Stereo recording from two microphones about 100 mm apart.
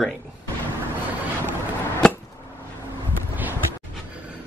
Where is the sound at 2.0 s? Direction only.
10° left (ahead or behind).